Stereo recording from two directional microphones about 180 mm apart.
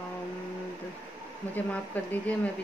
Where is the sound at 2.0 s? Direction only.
10° left (ahead or behind).